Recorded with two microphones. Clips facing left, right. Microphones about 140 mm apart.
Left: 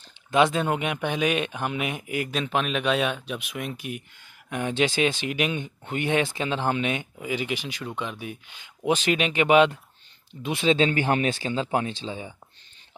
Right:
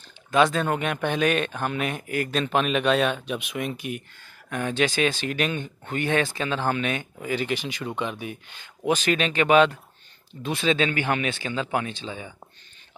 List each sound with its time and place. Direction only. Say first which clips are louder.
0.3 s speech: even; 20° left (ahead or behind); by 4.0 s centre (ahead or behind)
4.5 s speech: even; 20° left (ahead or behind); by 8.6 s 5° left (ahead or behind)
8.8 s speech: even; 20° left (ahead or behind)